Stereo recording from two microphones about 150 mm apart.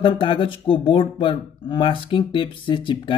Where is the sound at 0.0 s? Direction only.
35° left (ahead or behind).